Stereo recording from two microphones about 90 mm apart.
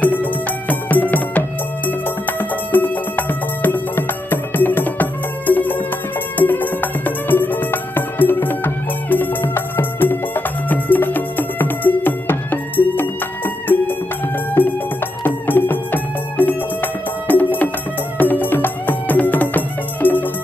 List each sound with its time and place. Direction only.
0.0 s music: 20° left (ahead or behind)